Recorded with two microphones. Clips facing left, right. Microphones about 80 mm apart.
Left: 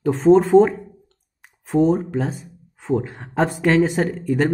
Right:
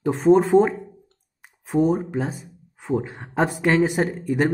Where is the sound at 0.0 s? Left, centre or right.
Centre.